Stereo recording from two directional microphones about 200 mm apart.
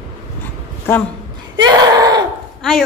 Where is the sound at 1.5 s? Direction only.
20° right (ahead or behind).